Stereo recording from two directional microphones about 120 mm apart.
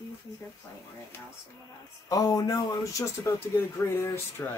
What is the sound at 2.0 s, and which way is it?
Speech, 30° left (ahead or behind).